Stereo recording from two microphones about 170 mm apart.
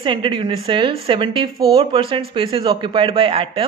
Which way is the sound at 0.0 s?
30° right (ahead or behind).